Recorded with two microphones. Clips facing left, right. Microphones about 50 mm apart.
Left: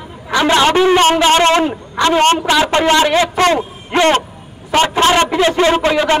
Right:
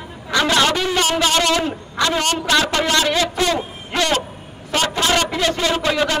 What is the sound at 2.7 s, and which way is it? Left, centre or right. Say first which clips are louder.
A man's voice: left 6 dB; left.